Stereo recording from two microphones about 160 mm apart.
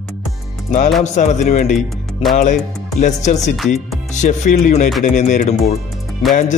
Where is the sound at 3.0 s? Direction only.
45° left (ahead or behind).